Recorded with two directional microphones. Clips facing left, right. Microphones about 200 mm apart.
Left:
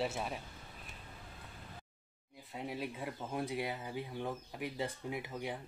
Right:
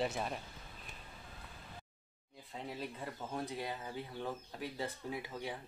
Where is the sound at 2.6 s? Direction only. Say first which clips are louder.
Left 3 dB; 10° left (ahead or behind).